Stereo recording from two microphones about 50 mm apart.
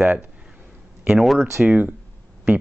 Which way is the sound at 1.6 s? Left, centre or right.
Right.